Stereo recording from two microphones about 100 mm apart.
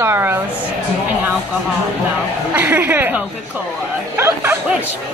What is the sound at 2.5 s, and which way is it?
A woman's voice, 20° right (ahead or behind).